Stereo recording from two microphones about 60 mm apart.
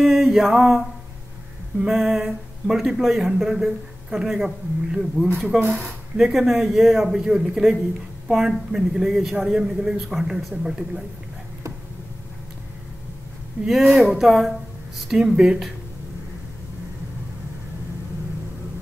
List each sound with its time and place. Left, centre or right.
0.0 s mantra: centre
1.9 s a sound: centre
3.0 s a man's voice: centre
13.6 s speech: right
13.9 s a man's voice: centre